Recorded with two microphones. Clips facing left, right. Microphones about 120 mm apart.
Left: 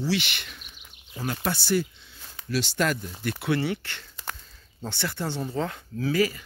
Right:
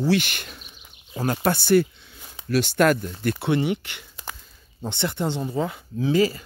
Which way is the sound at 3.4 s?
20° right (ahead or behind).